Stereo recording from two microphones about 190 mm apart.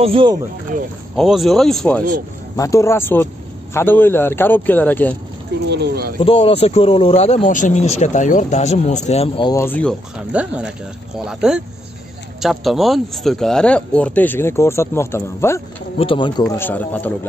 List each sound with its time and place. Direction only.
0.0 s speech: 30° right (ahead or behind)
1.1 s speech: centre (ahead or behind)
2.5 s speech: 15° left (ahead or behind)
5.7 s a sound: 60° right (ahead or behind)
6.1 s speech: 30° left (ahead or behind)
9.5 s speech: 10° left (ahead or behind)
10.3 s speech: 5° right (ahead or behind); by 15.6 s 15° left (ahead or behind)
16.0 s speech: 25° left (ahead or behind)
16.4 s speech: 10° left (ahead or behind)